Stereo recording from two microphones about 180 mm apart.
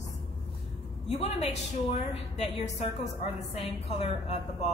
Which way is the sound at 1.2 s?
35° left (ahead or behind).